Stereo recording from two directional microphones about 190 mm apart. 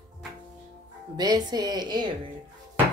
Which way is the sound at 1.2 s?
20° right (ahead or behind).